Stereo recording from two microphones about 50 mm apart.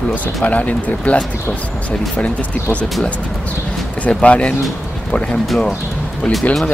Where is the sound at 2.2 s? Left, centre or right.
Left.